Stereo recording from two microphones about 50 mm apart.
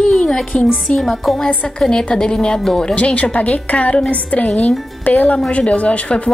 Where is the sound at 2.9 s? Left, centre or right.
Left.